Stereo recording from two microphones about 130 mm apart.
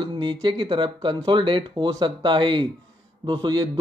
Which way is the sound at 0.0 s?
40° right (ahead or behind).